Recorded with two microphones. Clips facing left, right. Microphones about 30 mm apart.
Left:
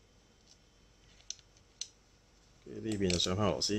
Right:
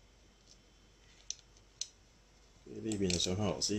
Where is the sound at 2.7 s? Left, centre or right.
Left.